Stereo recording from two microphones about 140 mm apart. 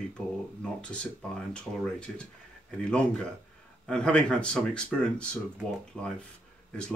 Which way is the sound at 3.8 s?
5° left (ahead or behind).